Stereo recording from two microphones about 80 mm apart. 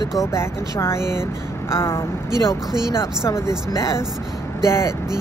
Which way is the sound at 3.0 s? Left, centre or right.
Left.